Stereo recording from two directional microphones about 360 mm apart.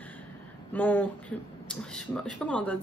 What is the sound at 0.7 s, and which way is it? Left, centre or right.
Speech, centre.